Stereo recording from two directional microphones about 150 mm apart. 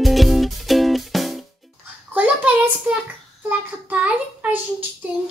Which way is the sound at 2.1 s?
10° right (ahead or behind).